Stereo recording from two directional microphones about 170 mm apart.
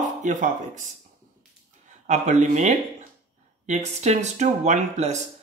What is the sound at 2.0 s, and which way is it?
Speech, 45° right (ahead or behind).